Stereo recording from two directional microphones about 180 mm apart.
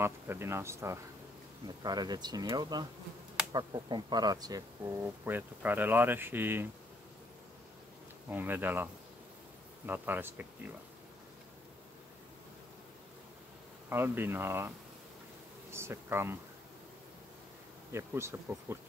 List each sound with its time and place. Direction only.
0.0 s speech: 15° right (ahead or behind)
8.3 s speech: 10° right (ahead or behind)
9.8 s speech: 10° right (ahead or behind)
13.8 s speech: 10° right (ahead or behind)
15.7 s speech: 15° right (ahead or behind)
17.9 s speech: 15° right (ahead or behind)